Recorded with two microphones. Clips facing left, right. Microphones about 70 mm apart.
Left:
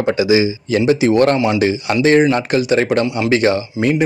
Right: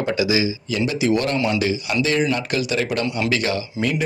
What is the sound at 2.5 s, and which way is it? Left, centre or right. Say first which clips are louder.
Speech: left 7 dB; left.